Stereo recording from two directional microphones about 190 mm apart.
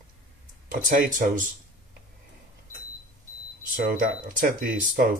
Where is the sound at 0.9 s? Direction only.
45° right (ahead or behind).